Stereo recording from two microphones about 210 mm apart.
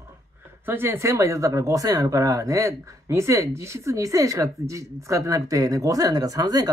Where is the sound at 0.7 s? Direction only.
10° right (ahead or behind).